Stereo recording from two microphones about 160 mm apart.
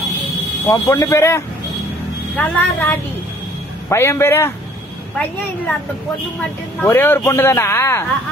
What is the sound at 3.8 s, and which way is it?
Speech, 15° left (ahead or behind).